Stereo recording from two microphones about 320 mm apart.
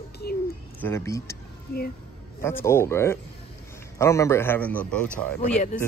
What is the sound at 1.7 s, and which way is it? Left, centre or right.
Speech, left.